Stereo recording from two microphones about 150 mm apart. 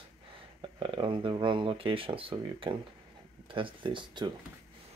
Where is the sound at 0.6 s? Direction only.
35° right (ahead or behind).